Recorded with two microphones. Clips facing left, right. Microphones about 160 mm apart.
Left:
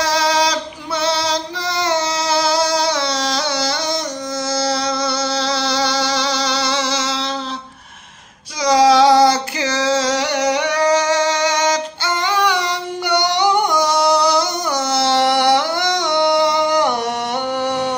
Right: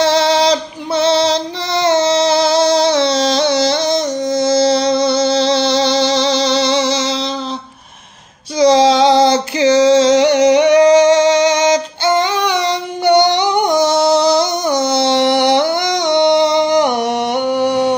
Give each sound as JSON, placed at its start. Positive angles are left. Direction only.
{"t": 0.0, "sound": "female singing", "side_deg": -25}
{"t": 8.5, "sound": "music", "side_deg": -25}